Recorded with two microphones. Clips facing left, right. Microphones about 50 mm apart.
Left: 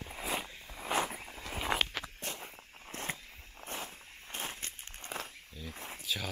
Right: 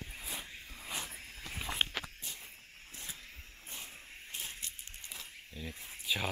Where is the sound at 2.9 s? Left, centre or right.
Left.